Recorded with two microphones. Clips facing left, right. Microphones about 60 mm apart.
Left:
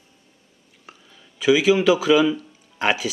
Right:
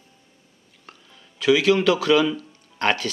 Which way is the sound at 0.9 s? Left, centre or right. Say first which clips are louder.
Left 1 dB; centre.